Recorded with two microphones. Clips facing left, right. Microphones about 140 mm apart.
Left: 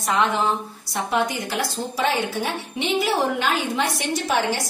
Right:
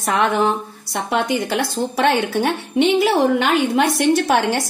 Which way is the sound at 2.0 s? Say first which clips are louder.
Right 5 dB; 65° right (ahead or behind).